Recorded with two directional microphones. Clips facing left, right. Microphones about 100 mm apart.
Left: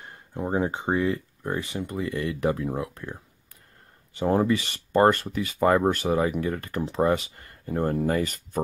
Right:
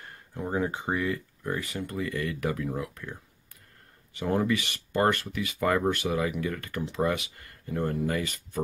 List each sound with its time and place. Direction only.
0.3 s speech: 25° left (ahead or behind)